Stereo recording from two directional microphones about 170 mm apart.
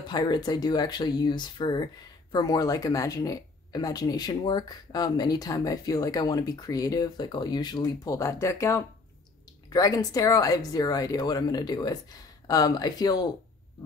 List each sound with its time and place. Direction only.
0.1 s speech: 25° left (ahead or behind)